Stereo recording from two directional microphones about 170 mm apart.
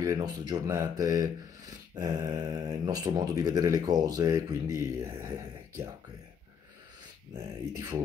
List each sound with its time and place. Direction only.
0.0 s speech: 20° right (ahead or behind)